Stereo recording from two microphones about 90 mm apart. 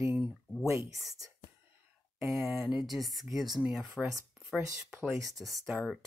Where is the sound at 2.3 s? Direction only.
5° right (ahead or behind).